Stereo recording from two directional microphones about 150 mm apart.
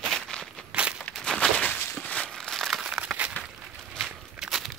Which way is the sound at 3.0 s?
10° right (ahead or behind).